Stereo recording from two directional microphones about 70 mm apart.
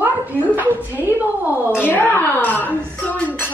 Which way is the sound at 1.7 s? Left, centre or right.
Left.